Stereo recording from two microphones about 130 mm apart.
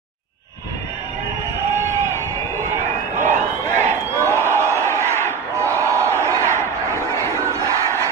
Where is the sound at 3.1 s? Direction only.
75° right (ahead or behind).